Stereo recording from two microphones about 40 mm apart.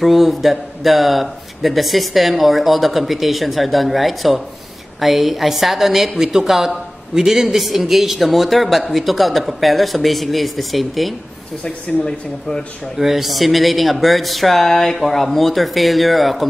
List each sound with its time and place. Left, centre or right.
0.0 s a woman's voice: centre
11.6 s speech: centre
12.9 s a woman's voice: centre